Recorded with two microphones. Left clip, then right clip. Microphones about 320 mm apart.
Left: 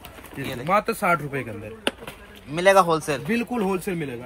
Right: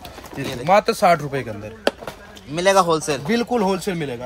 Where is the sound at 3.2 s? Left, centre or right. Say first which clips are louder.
Right 6 dB; centre.